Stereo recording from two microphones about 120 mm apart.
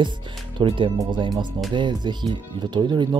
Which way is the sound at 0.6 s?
45° right (ahead or behind).